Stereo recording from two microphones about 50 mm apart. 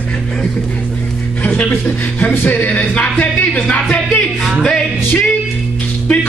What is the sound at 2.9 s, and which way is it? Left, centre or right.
Speech, left.